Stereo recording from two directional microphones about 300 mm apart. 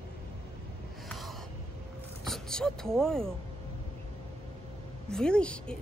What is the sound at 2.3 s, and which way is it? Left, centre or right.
Speech, centre.